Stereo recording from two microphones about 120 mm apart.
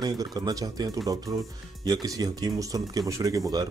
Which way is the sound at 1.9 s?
35° right (ahead or behind).